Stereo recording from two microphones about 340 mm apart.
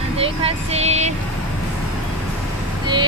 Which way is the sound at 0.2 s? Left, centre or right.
Centre.